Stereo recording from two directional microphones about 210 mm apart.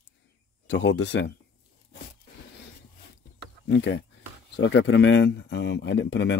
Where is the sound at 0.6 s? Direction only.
55° left (ahead or behind).